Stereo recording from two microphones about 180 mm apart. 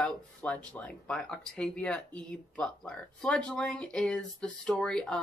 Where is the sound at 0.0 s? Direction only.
5° left (ahead or behind).